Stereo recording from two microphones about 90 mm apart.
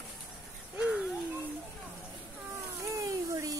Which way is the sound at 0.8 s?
10° right (ahead or behind).